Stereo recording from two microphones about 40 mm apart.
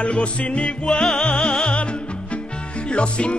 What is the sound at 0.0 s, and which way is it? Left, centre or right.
Music, left.